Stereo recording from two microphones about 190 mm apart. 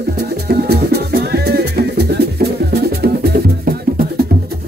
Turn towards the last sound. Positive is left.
turn(degrees=-50)  # may be behind; listen again after turning